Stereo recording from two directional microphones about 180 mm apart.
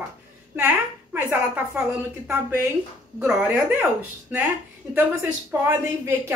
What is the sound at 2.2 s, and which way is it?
A woman's voice, 15° right (ahead or behind).